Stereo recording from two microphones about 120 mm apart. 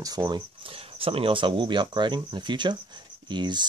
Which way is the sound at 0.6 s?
50° right (ahead or behind).